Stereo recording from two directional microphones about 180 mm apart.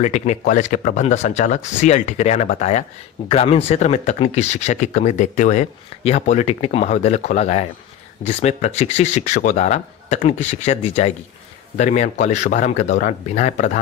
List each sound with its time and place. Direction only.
0.0 s speech: 40° left (ahead or behind)